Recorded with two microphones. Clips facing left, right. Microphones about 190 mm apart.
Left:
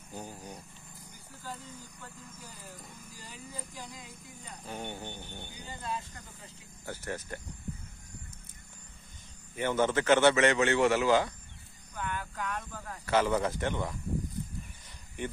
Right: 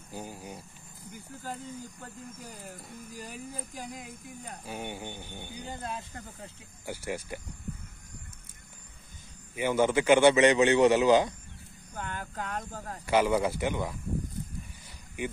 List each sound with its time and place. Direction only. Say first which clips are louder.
0.1 s a man's voice: right 2 dB; 10° right (ahead or behind)
1.1 s speech: right 5 dB; 50° right (ahead or behind)
4.6 s a man's voice: right 1 dB; 10° right (ahead or behind)
5.7 s speech: left 1 dB; 55° right (ahead or behind)
6.9 s a man's voice: right 3 dB; 10° right (ahead or behind)
9.6 s a man's voice: right 3 dB; 10° right (ahead or behind)
11.9 s a sound: left 1 dB; 40° right (ahead or behind)
13.0 s a man's voice: right 2 dB; 10° right (ahead or behind)
15.2 s a man's voice: right 2 dB; 10° right (ahead or behind)